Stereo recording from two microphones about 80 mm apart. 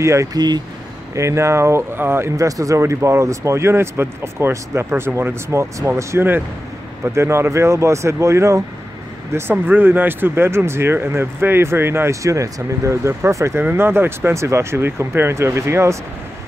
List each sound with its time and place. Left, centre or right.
0.0 s speech: right
2.3 s speech: right
9.3 s speech: right
13.6 s speech: right